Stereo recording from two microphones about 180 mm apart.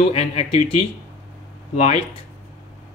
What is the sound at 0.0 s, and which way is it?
Speech, 35° left (ahead or behind).